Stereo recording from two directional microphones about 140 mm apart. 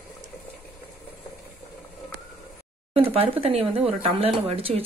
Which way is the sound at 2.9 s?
45° right (ahead or behind).